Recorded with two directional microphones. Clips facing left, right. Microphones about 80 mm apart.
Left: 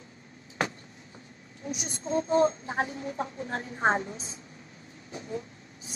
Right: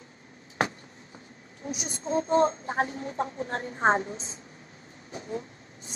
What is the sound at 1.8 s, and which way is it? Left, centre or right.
A woman's voice, right.